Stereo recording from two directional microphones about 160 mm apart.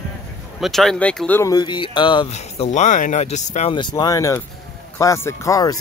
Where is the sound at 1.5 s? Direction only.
25° left (ahead or behind).